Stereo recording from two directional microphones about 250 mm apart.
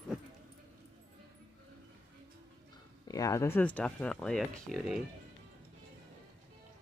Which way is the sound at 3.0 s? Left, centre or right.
Centre.